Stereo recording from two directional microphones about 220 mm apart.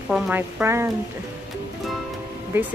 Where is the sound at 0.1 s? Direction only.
10° right (ahead or behind).